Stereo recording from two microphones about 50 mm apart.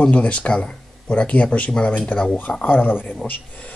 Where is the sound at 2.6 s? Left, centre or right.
Left.